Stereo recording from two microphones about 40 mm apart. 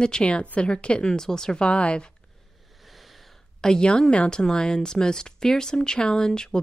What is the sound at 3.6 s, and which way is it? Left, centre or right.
A woman's voice, centre.